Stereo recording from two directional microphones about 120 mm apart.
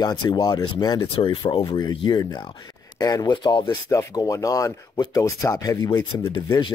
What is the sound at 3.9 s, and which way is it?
Speech, 30° left (ahead or behind).